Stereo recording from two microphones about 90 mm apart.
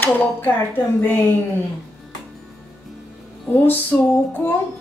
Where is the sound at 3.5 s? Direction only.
20° left (ahead or behind).